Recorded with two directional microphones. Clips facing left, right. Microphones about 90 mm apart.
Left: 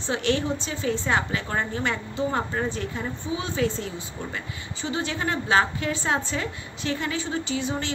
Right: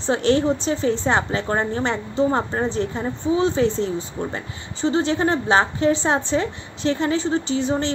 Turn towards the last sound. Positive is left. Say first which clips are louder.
# right 6 dB
turn(degrees=-35)  # may be behind; listen again after turning